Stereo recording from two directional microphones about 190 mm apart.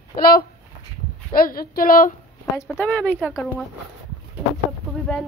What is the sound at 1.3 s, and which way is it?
Speech, 50° left (ahead or behind).